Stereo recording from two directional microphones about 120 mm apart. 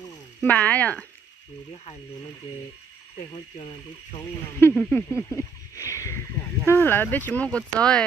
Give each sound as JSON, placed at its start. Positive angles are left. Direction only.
{"t": 0.4, "sound": "speech", "side_deg": 10}
{"t": 3.5, "sound": "speech", "side_deg": 45}
{"t": 4.6, "sound": "speech", "side_deg": 20}
{"t": 4.9, "sound": "a sound", "side_deg": 20}